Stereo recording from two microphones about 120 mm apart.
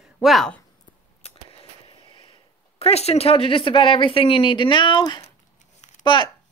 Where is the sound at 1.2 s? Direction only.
50° left (ahead or behind).